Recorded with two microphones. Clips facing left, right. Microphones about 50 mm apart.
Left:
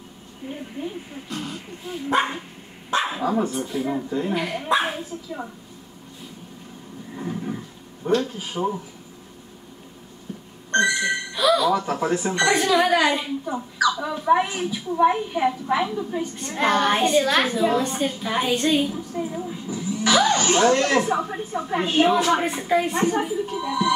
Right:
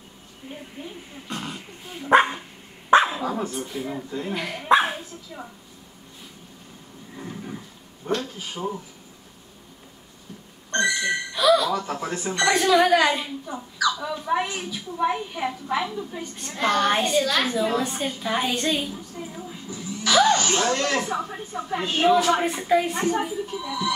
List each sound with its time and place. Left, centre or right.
3.1 s speech: centre
4.9 s speech: centre
7.2 s roaring cats: centre
8.1 s speech: centre
10.7 s a woman's voice: centre
13.7 s speech: centre
17.2 s a woman's voice: centre
17.6 s a woman's voice: centre
19.1 s music: centre
20.1 s a sound: centre
20.3 s a woman's voice: centre
23.4 s speech: centre